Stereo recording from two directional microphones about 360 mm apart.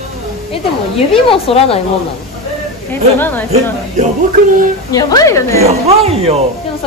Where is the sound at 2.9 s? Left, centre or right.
Centre.